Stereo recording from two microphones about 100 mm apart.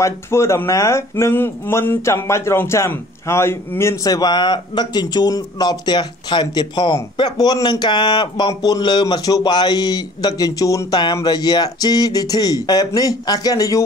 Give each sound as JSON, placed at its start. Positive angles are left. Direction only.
{"t": 0.0, "sound": "speech", "side_deg": 25}
{"t": 4.0, "sound": "speech", "side_deg": 40}